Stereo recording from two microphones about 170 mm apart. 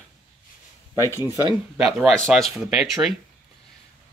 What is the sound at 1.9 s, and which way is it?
Speech, centre (ahead or behind).